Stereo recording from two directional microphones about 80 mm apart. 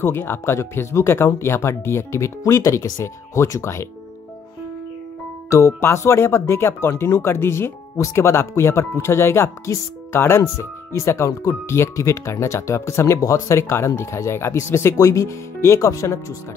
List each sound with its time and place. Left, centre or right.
0.0 s speech: left
5.5 s speech: left